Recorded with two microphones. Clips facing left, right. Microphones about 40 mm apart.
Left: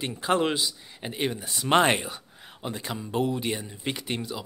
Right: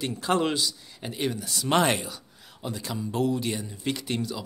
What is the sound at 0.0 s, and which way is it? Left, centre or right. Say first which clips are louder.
Speech: even; centre.